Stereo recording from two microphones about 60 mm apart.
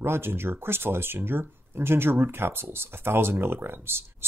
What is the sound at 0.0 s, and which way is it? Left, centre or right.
Speech, right.